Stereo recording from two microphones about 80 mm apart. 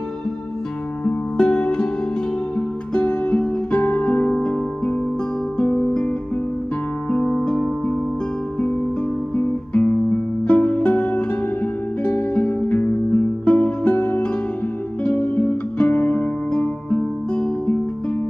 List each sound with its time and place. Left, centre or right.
1.0 s music: centre
2.9 s music: centre
5.6 s guitar: centre
7.1 s music: centre
9.3 s guitar: centre
10.4 s music: centre